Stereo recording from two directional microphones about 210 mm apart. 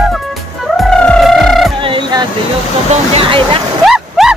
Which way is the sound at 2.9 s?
25° right (ahead or behind).